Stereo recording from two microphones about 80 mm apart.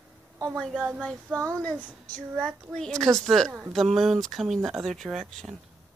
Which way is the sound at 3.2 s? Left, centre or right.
Centre.